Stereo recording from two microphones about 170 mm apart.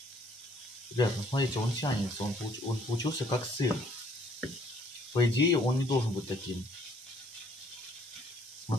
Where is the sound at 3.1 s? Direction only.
30° left (ahead or behind).